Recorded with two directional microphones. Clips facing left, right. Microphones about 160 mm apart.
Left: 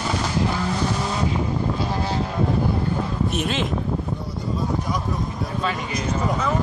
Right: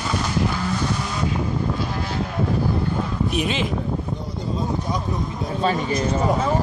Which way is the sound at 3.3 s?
Centre (ahead or behind).